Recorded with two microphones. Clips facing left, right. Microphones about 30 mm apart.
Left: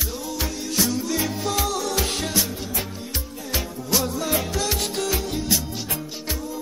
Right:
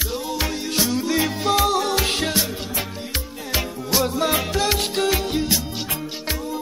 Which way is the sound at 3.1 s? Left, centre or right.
Right.